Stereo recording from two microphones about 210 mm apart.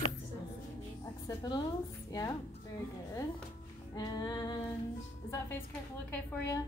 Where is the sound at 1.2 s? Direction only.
20° left (ahead or behind).